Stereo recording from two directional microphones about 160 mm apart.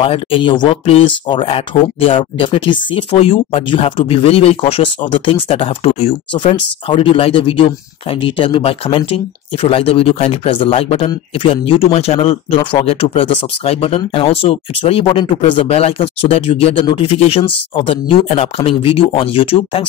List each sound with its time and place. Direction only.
0.0 s speech: 35° left (ahead or behind)